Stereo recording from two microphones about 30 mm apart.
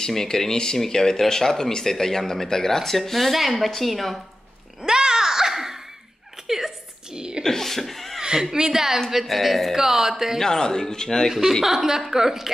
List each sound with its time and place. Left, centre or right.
0.1 s speech: centre
4.8 s a sound: right
7.2 s a sound: right
7.4 s a sound: centre
7.8 s chuckle: centre
8.2 s a woman's voice: right
9.2 s speech: centre
9.8 s speech: centre
10.4 s speech: centre
11.6 s speech: centre